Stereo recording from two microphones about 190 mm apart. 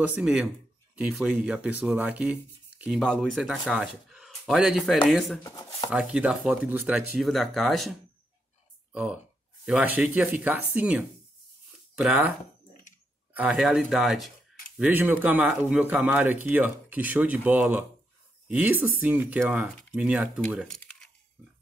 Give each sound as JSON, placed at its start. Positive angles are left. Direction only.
{"t": 0.0, "sound": "speech", "side_deg": -5}
{"t": 5.4, "sound": "speech", "side_deg": 15}
{"t": 5.9, "sound": "speech", "side_deg": -5}
{"t": 8.9, "sound": "speech", "side_deg": -5}